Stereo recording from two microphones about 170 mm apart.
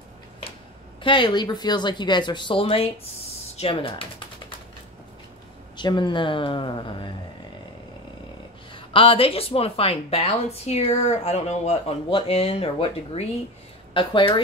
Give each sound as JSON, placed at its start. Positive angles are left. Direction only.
{"t": 1.0, "sound": "speech", "side_deg": 30}
{"t": 3.5, "sound": "typing", "side_deg": 30}
{"t": 5.8, "sound": "speech", "side_deg": 25}
{"t": 8.7, "sound": "speech", "side_deg": 30}